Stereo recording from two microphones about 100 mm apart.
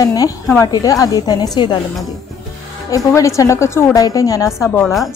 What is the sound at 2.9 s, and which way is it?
A woman's voice, 30° left (ahead or behind).